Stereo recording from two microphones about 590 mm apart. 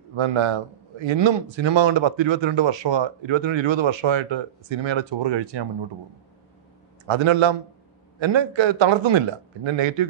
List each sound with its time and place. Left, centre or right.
0.1 s a man's voice: right
7.1 s a man's voice: right